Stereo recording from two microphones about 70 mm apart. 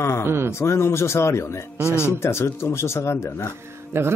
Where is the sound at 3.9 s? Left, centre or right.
Right.